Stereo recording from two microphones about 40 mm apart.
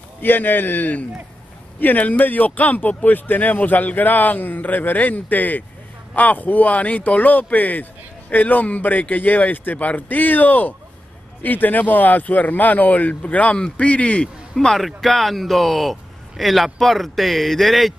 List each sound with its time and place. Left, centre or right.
0.2 s a man's voice: left
14.8 s a man's voice: centre